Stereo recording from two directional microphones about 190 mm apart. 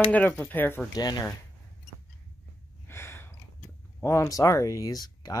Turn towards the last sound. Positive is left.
turn(degrees=20)  # may be behind; listen again after turning